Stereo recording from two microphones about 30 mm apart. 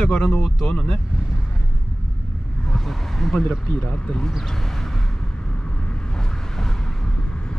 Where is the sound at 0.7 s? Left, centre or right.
Left.